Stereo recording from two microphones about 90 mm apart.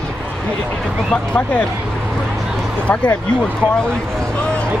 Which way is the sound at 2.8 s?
15° left (ahead or behind).